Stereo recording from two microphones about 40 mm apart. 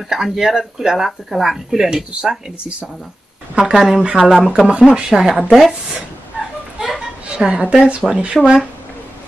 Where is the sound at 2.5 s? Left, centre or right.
Right.